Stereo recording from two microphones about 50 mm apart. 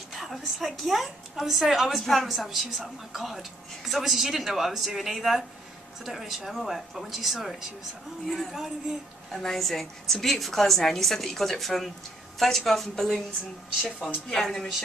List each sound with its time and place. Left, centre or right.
0.1 s a woman's voice: centre
13.9 s a woman's voice: centre